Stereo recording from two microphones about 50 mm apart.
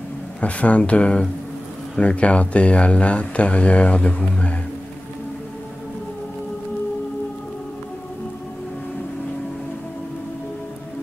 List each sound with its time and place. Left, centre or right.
0.4 s speech: left